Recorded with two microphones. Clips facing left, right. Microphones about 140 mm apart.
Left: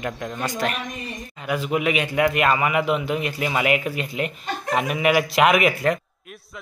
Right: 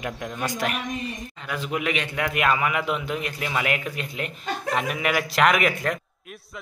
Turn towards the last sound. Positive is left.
turn(degrees=5)  # may be behind; listen again after turning